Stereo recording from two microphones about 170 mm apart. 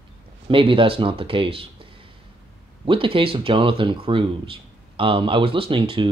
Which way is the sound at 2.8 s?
30° right (ahead or behind).